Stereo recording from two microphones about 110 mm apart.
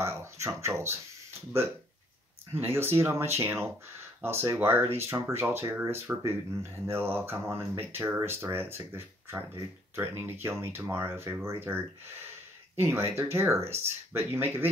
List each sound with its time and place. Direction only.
0.0 s speech: 25° right (ahead or behind)
2.5 s speech: 20° right (ahead or behind)